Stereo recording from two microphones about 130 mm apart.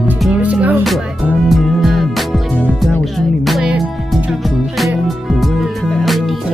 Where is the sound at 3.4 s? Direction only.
5° right (ahead or behind).